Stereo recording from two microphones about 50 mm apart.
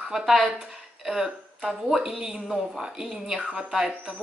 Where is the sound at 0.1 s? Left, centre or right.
Centre.